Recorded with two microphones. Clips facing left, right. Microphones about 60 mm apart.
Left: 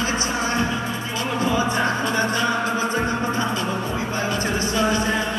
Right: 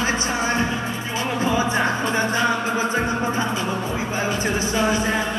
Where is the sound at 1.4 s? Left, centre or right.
Right.